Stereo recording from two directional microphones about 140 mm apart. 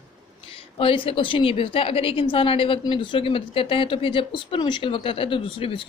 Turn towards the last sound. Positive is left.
turn(degrees=40)  # may be behind; listen again after turning